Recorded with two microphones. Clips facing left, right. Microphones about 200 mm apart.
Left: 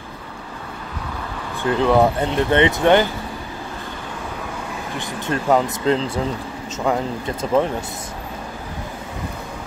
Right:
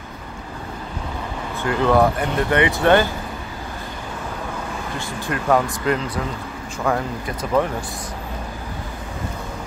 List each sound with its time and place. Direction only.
1.6 s speech: 15° left (ahead or behind)
4.9 s speech: 20° left (ahead or behind)